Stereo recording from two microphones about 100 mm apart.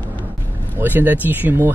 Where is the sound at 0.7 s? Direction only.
20° right (ahead or behind).